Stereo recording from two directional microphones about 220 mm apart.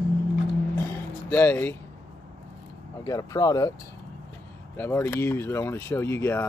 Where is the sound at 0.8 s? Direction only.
10° left (ahead or behind).